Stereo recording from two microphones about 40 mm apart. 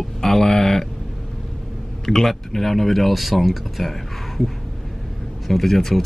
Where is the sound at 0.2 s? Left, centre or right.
Centre.